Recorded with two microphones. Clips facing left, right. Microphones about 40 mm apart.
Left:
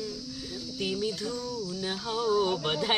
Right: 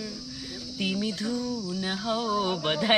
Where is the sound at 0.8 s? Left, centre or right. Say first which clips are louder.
Right 2 dB; right.